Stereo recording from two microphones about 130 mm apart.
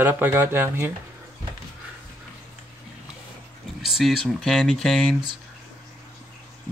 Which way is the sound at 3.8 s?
Centre (ahead or behind).